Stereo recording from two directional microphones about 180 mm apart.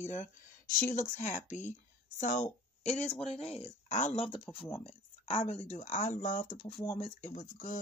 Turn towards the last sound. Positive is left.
turn(degrees=45)  # may be behind; listen again after turning